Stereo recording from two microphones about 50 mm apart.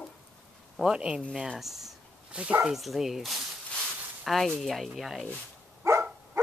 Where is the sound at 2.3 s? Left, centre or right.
Right.